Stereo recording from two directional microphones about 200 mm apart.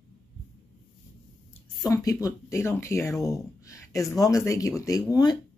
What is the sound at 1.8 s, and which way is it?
Speech, 20° left (ahead or behind).